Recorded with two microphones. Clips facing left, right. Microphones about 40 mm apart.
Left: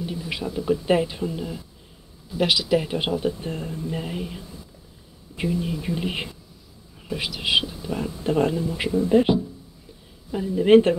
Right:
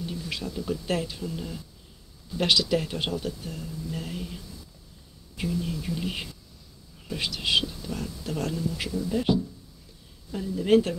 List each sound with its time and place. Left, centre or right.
0.0 s speech: centre
1.3 s speech: centre; by 3.9 s left
3.9 s speech: left
7.1 s speech: centre; by 11.0 s left